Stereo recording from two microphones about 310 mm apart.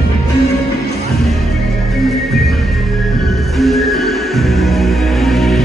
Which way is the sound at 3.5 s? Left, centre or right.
Centre.